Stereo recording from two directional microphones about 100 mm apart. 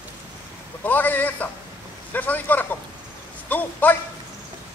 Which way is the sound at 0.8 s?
15° left (ahead or behind).